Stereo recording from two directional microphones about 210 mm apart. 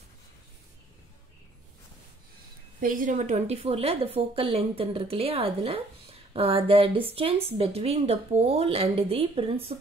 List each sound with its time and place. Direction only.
2.8 s a woman's voice: 40° right (ahead or behind)